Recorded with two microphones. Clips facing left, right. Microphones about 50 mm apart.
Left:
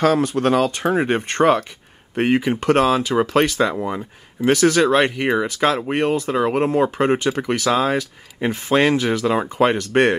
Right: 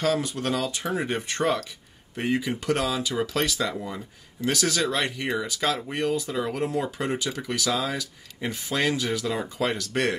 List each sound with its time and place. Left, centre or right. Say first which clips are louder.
0.0 s speech: left 8 dB; left